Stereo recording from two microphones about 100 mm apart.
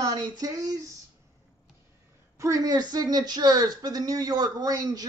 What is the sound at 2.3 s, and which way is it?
Speech, 35° right (ahead or behind).